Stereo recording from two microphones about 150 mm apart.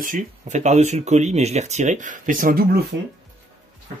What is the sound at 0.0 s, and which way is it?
Speech, 60° right (ahead or behind).